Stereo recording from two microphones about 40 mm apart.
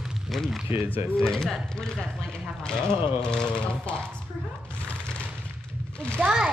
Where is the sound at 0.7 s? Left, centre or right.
Right.